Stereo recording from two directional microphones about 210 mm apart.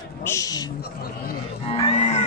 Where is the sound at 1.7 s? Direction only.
25° left (ahead or behind).